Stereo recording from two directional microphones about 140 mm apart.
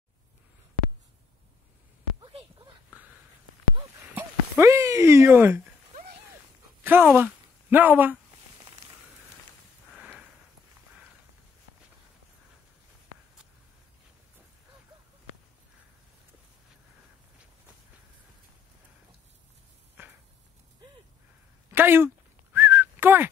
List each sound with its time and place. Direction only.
2.9 s a sound: 10° right (ahead or behind)
6.8 s speech: 10° right (ahead or behind)
21.6 s whistling: 15° right (ahead or behind)